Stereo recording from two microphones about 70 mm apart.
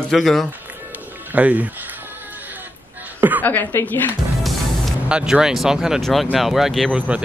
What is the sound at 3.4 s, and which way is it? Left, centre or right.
Speech, left.